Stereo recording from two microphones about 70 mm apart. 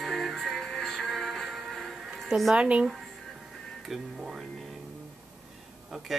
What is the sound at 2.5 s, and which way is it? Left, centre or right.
Speech, centre.